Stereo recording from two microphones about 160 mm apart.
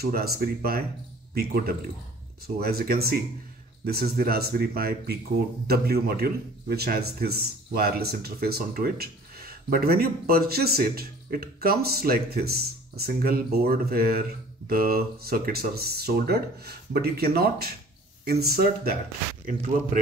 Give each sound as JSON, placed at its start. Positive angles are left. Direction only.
{"t": 0.0, "sound": "a man's voice", "side_deg": -75}